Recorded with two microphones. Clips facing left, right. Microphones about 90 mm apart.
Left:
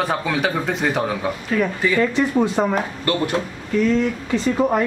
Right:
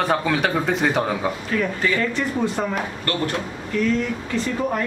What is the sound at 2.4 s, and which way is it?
Speech, 15° left (ahead or behind).